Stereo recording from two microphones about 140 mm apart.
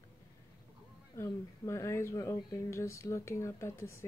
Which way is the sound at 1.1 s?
20° left (ahead or behind).